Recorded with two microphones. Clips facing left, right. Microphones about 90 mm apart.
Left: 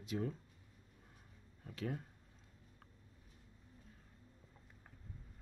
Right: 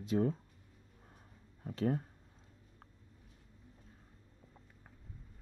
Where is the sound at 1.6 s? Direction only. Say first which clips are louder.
Right 9 dB; 35° right (ahead or behind).